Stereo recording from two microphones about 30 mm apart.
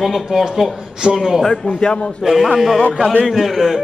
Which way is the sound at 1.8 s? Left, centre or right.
Left.